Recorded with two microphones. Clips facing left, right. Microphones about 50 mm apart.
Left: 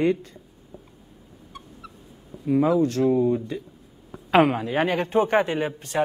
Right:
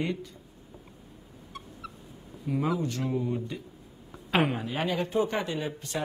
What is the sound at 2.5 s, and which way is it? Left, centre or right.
A man's voice, left.